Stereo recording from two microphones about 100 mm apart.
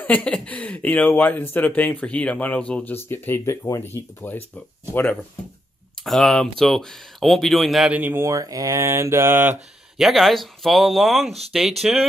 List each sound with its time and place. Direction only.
0.0 s speech: 15° left (ahead or behind)
6.0 s speech: 5° left (ahead or behind)
7.9 s speech: 20° right (ahead or behind)
8.3 s speech: 35° right (ahead or behind); by 9.6 s 20° right (ahead or behind)
9.9 s speech: centre (ahead or behind)